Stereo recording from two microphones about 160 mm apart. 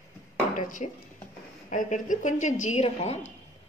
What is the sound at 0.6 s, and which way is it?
A woman's voice, 55° left (ahead or behind).